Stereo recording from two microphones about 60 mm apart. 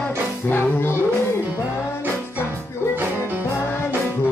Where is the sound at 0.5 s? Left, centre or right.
Left.